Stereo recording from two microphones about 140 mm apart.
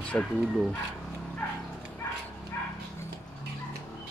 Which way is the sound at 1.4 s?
15° left (ahead or behind).